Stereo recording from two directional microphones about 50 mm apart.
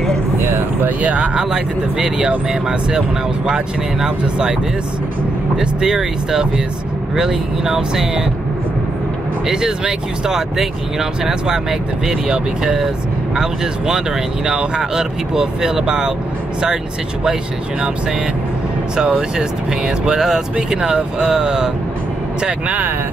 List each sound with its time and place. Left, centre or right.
0.4 s a sound: right
1.0 s speech: right
1.3 s speech: centre
5.6 s speech: centre
9.5 s speech: centre
20.1 s speech: centre
22.7 s speech: right